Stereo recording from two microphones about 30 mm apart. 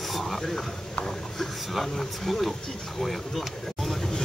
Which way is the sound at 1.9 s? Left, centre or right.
Centre.